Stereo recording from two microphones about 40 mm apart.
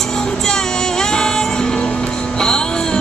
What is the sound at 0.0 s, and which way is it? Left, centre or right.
Music, centre.